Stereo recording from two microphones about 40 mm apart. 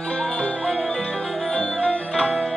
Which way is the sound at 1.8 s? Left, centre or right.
Left.